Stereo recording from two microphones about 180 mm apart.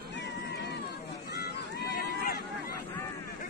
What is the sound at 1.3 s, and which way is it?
Run, 60° left (ahead or behind).